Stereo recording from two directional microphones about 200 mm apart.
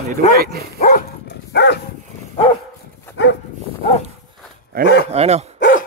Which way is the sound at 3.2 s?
65° left (ahead or behind).